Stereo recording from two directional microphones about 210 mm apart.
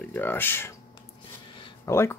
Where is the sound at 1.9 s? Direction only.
10° left (ahead or behind).